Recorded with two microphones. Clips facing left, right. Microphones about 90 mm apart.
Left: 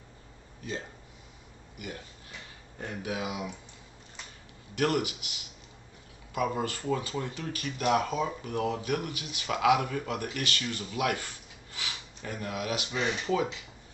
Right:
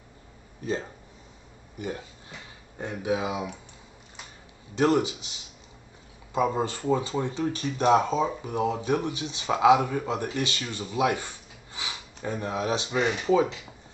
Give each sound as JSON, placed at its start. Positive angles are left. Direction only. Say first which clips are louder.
{"t": 1.8, "sound": "speech", "louder": "right 7 dB", "side_deg": -30}
{"t": 2.8, "sound": "speech", "louder": "right 6 dB", "side_deg": -20}
{"t": 4.7, "sound": "speech", "louder": "right 5 dB", "side_deg": -25}